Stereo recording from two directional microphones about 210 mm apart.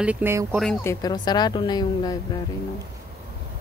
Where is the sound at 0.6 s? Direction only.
5° left (ahead or behind).